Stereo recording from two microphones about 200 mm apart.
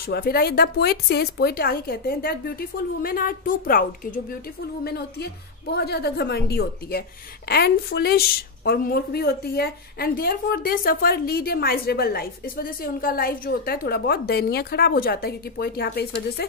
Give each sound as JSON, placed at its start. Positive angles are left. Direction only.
{"t": 0.0, "sound": "a woman's voice", "side_deg": 50}